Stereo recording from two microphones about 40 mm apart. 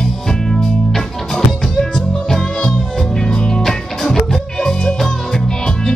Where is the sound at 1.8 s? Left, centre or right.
Centre.